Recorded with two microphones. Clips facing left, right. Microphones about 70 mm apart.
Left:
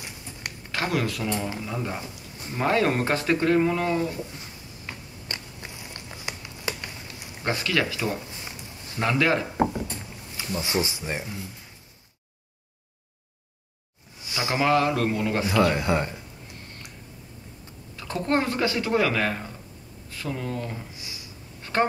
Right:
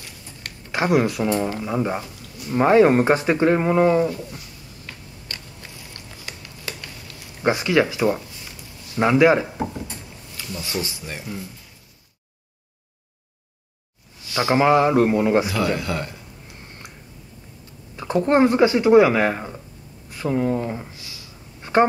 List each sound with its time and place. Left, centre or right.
0.0 s a sound: left
0.7 s speech: right
4.4 s a sound: left
7.4 s speech: right
8.5 s a sound: left
9.0 s speech: centre
10.3 s speech: left
14.3 s speech: right
15.7 s speech: left
17.9 s speech: right
20.9 s a sound: left
21.7 s speech: centre